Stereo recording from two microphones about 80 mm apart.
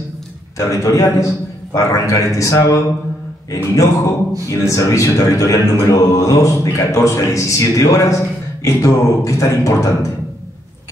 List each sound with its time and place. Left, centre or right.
0.6 s speech: left